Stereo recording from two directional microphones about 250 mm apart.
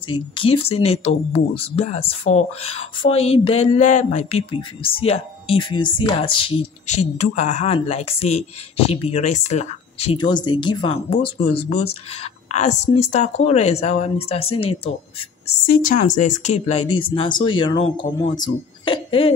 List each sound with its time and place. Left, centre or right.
0.1 s speech: left
8.8 s speech: left
9.1 s speech: left
15.6 s a woman's voice: left